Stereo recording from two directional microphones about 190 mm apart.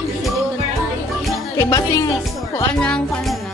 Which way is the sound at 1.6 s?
15° left (ahead or behind).